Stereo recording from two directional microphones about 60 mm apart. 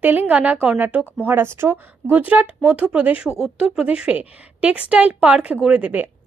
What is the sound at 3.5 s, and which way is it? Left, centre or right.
Speech, centre.